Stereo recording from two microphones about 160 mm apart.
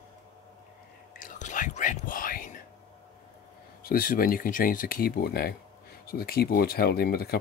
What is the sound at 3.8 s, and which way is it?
Speech, 65° left (ahead or behind).